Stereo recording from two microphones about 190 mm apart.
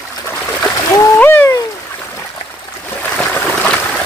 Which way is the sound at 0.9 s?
10° left (ahead or behind).